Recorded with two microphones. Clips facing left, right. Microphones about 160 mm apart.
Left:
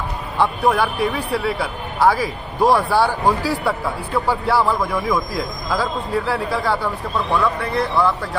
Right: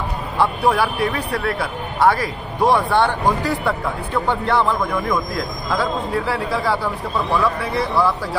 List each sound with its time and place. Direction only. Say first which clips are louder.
0.7 s speech: left 1 dB; centre (ahead or behind)